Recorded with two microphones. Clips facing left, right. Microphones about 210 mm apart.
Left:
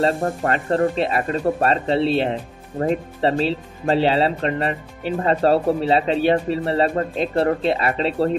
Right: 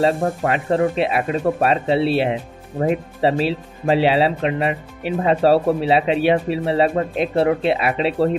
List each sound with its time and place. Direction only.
0.0 s speech: centre (ahead or behind)